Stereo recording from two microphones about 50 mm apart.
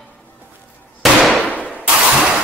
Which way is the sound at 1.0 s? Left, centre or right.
Centre.